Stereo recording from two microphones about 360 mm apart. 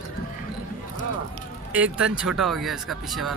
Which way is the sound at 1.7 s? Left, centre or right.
Centre.